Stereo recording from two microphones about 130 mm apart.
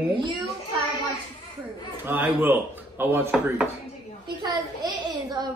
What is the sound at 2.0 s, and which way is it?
Speech, 15° right (ahead or behind).